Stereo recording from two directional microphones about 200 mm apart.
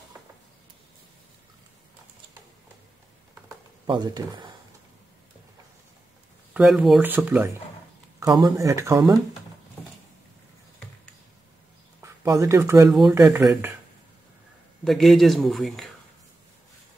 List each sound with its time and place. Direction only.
3.8 s speech: 20° right (ahead or behind)
6.5 s speech: 5° right (ahead or behind)
12.0 s speech: 15° right (ahead or behind)
14.9 s speech: centre (ahead or behind)